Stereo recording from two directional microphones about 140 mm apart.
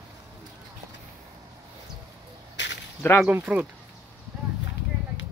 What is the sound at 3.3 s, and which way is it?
Speech, 10° right (ahead or behind).